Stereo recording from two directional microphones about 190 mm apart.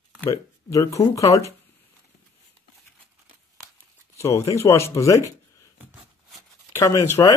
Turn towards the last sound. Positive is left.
turn(degrees=15)  # may be behind; listen again after turning